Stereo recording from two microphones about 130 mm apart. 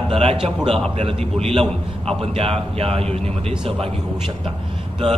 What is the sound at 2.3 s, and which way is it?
A man's voice, 50° right (ahead or behind).